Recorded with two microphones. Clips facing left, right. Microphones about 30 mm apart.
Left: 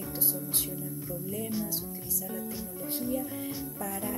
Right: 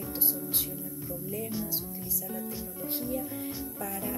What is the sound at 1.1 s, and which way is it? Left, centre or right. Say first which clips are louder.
Speech: even; centre.